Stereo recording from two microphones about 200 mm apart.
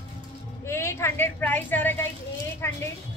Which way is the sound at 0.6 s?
15° left (ahead or behind).